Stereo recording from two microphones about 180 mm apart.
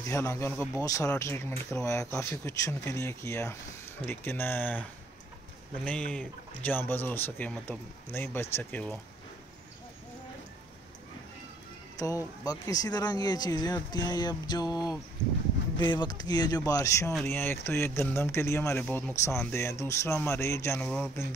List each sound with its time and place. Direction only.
0.1 s speech: 15° left (ahead or behind)
5.9 s speech: 5° left (ahead or behind)
12.0 s speech: 15° left (ahead or behind)